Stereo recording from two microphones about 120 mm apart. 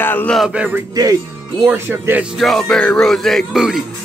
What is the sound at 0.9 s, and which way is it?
Speech, 30° right (ahead or behind).